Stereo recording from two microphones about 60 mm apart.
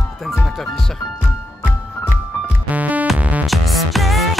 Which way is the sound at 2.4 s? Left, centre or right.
Right.